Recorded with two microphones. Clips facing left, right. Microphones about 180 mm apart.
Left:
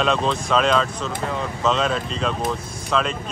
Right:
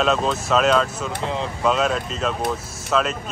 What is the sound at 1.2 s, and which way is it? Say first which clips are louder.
Speech: right 1 dB; 25° right (ahead or behind).